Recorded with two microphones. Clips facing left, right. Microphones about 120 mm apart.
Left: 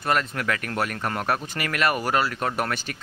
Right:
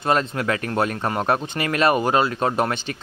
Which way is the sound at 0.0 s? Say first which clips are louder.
Right 4 dB; 25° right (ahead or behind).